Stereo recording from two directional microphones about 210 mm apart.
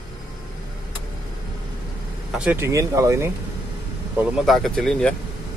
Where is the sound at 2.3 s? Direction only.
10° right (ahead or behind).